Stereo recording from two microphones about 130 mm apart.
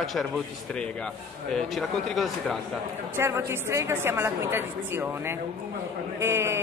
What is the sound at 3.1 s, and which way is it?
Speech, 20° right (ahead or behind).